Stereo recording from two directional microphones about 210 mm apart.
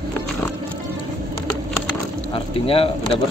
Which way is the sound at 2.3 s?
25° left (ahead or behind).